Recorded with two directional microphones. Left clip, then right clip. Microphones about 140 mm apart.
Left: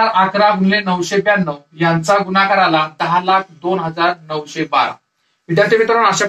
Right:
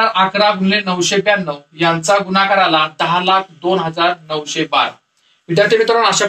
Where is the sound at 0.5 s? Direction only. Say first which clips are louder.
Left 1 dB; 10° right (ahead or behind).